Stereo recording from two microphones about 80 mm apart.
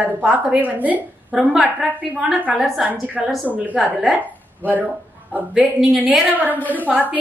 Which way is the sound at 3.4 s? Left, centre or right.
Centre.